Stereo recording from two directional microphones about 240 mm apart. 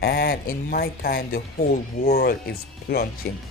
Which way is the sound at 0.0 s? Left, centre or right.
Left.